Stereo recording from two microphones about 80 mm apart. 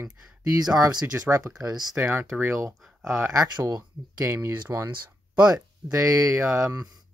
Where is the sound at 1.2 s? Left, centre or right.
Right.